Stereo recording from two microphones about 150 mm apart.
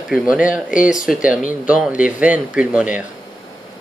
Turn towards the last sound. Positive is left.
turn(degrees=-10)  # may be behind; listen again after turning